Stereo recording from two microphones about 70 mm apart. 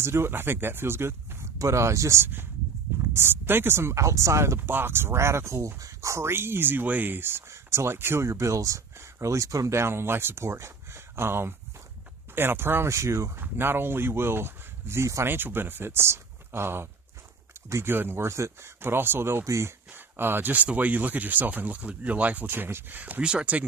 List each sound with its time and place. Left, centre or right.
0.0 s speech: right
4.6 s speech: right
13.4 s speech: right
15.2 s speech: right
19.4 s speech: right
19.9 s speech: right